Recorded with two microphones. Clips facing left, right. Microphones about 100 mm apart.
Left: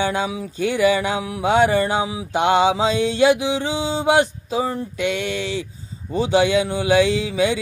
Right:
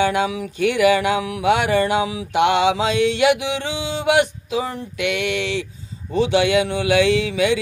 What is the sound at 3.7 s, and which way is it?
Mantra, 40° left (ahead or behind).